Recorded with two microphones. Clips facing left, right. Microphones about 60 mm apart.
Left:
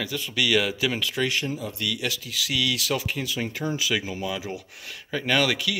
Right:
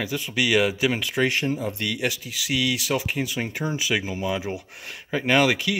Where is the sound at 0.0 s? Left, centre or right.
Right.